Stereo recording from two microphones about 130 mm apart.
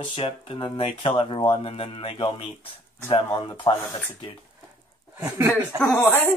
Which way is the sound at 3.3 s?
30° left (ahead or behind).